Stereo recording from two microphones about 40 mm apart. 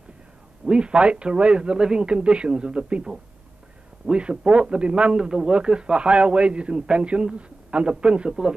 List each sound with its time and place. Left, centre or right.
0.7 s a man's voice: right